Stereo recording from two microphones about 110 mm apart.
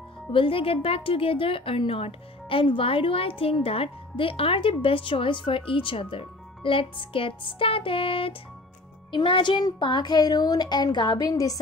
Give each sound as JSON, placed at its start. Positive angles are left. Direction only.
{"t": 0.3, "sound": "speech", "side_deg": 55}